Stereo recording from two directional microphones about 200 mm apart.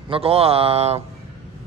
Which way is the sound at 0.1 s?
30° right (ahead or behind).